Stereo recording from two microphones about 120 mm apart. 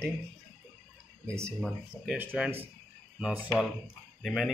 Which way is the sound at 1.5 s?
Centre (ahead or behind).